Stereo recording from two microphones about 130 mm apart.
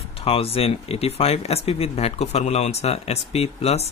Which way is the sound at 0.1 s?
50° left (ahead or behind).